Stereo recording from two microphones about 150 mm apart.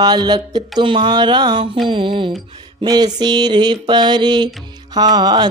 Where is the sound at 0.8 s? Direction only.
35° right (ahead or behind).